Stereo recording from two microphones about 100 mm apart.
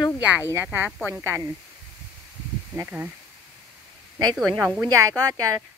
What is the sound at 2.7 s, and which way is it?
Speech, 15° right (ahead or behind).